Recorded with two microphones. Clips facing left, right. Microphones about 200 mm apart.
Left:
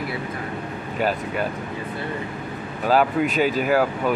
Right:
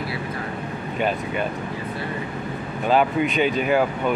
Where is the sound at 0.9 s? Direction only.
5° left (ahead or behind).